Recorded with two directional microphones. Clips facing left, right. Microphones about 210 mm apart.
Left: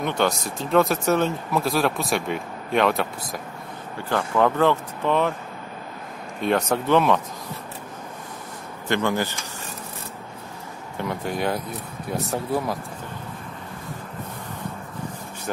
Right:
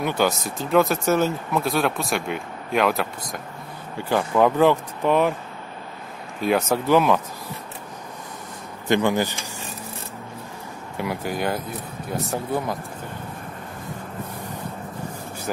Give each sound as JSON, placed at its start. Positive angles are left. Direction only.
{"t": 0.0, "sound": "speech", "side_deg": -5}
{"t": 4.1, "sound": "speech", "side_deg": -10}
{"t": 6.4, "sound": "speech", "side_deg": -5}
{"t": 8.8, "sound": "speech", "side_deg": -15}
{"t": 11.0, "sound": "speech", "side_deg": -5}